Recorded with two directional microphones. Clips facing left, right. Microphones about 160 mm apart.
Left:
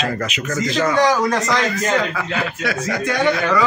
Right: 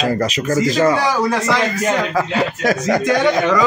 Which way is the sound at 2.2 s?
40° right (ahead or behind).